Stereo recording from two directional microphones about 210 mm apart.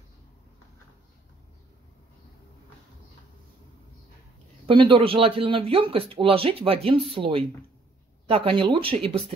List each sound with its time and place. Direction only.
4.6 s speech: 25° right (ahead or behind)